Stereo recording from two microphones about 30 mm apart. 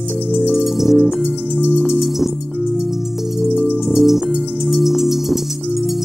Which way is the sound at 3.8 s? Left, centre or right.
Centre.